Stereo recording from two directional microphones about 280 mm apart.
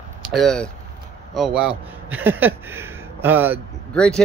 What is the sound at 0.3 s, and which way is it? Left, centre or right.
Speech, centre.